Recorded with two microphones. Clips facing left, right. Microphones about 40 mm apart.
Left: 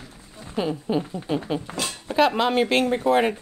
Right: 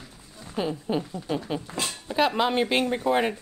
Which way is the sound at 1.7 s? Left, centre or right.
Left.